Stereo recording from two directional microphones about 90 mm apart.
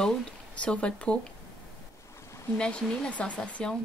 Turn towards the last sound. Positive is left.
turn(degrees=10)  # may be behind; listen again after turning